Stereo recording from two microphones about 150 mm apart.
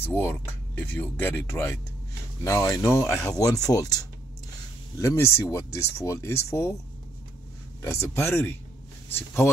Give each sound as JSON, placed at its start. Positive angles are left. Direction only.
{"t": 0.0, "sound": "speech", "side_deg": 15}
{"t": 7.8, "sound": "speech", "side_deg": 15}